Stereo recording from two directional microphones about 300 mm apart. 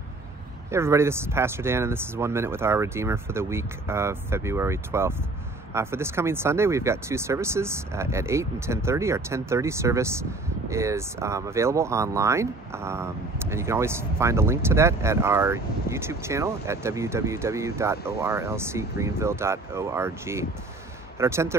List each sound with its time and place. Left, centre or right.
0.7 s speech: centre